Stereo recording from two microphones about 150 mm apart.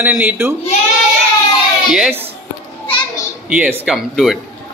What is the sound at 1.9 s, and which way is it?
Speech, 10° right (ahead or behind).